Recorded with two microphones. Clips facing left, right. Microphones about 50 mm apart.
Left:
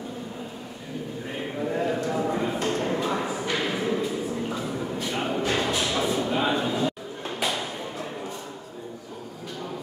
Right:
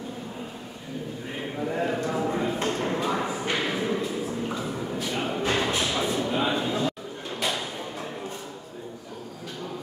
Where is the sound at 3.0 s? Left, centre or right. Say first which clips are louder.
Even; centre.